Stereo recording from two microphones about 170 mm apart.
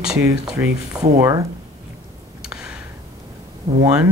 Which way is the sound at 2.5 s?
5° right (ahead or behind).